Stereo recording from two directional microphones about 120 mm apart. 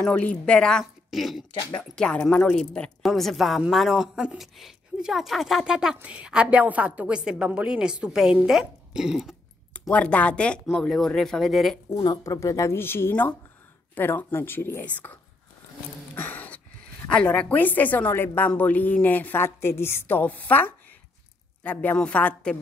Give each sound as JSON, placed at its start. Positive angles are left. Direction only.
{"t": 0.0, "sound": "a woman's voice", "side_deg": 10}
{"t": 9.8, "sound": "a woman's voice", "side_deg": 10}
{"t": 11.9, "sound": "a woman's voice", "side_deg": 30}
{"t": 16.2, "sound": "a sound", "side_deg": 15}
{"t": 17.1, "sound": "a woman's voice", "side_deg": 10}